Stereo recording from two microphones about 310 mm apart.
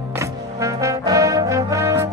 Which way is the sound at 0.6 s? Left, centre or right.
Centre.